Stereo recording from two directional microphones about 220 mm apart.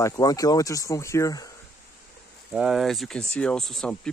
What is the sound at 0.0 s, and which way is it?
Speech, 15° left (ahead or behind).